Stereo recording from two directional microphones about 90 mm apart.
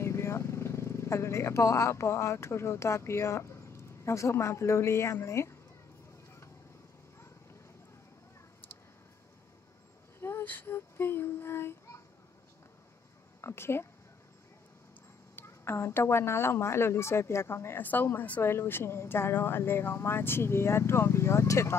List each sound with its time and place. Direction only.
0.0 s speech: 30° left (ahead or behind)
10.2 s child singing: 20° left (ahead or behind)
13.4 s speech: 30° left (ahead or behind)
15.3 s a woman's voice: 25° left (ahead or behind)